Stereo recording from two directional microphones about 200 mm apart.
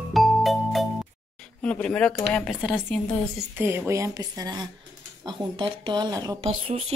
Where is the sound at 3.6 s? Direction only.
10° right (ahead or behind).